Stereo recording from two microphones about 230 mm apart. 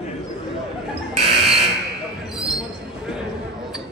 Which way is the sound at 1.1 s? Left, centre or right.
Right.